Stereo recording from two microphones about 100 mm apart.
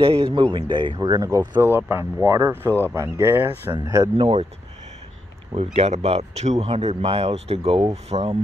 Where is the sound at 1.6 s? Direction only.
20° right (ahead or behind).